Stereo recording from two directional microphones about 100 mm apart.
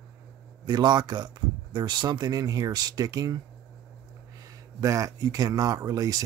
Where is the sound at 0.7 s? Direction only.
45° right (ahead or behind).